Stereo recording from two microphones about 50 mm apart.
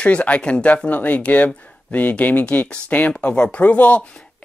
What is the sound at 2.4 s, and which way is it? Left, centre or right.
Speech, left.